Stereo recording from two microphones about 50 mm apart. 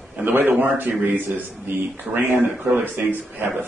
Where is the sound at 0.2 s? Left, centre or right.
Right.